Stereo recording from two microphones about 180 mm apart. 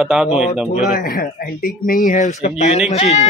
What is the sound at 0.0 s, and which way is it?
Speech, 5° right (ahead or behind).